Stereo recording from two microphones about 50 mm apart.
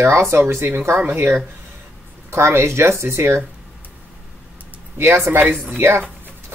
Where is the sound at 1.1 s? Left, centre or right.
Right.